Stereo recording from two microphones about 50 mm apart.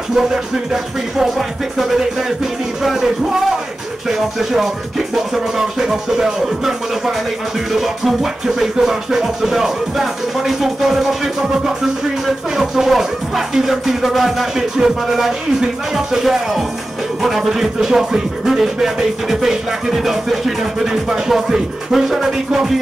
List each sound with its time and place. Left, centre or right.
1.8 s speech: centre
4.1 s music: centre
12.5 s music: centre
13.6 s speech: centre
17.2 s music: centre